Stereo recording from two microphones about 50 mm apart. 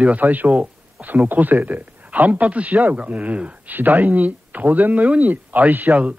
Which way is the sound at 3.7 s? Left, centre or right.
Right.